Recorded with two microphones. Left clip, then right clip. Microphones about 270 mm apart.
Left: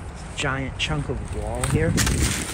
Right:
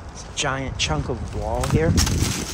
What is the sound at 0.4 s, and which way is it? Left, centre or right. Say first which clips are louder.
Speech: right 2 dB; centre.